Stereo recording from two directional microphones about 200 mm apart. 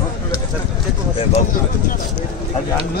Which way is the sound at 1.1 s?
30° left (ahead or behind).